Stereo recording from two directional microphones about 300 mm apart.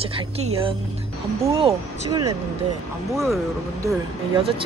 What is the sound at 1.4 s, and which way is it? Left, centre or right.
Speech, centre.